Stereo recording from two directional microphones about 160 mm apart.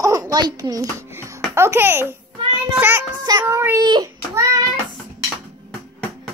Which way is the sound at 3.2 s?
25° right (ahead or behind).